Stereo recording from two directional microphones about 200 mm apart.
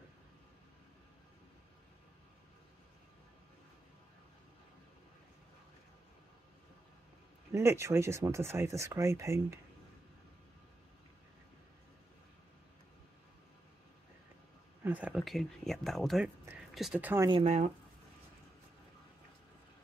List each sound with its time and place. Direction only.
7.5 s speech: 15° right (ahead or behind)
14.8 s speech: 10° right (ahead or behind)
17.3 s speech: 30° right (ahead or behind)